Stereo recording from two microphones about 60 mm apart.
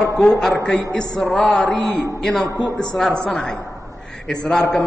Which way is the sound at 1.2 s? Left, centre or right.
Centre.